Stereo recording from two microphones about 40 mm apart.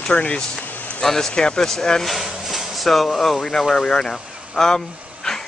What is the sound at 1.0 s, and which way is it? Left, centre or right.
Speech, centre.